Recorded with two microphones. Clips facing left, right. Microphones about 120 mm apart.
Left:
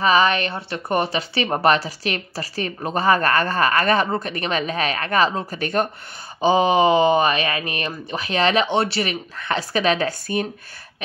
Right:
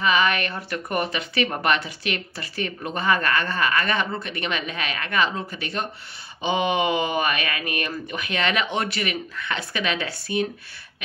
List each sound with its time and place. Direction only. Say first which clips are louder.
0.0 s speech: left 4 dB; 35° left (ahead or behind)
6.4 s speech: left 6 dB; 35° left (ahead or behind)